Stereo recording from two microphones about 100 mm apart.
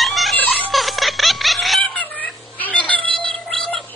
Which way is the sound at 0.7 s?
Centre (ahead or behind).